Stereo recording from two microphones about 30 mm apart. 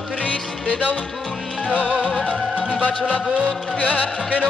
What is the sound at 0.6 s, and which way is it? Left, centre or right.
Music, left.